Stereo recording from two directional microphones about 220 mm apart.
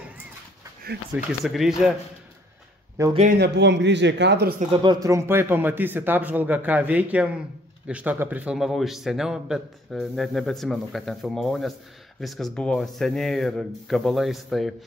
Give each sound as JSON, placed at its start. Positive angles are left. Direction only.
{"t": 1.1, "sound": "a man's voice", "side_deg": 0}
{"t": 3.0, "sound": "speech", "side_deg": -15}
{"t": 3.3, "sound": "speech", "side_deg": -50}
{"t": 4.8, "sound": "a man's voice", "side_deg": -15}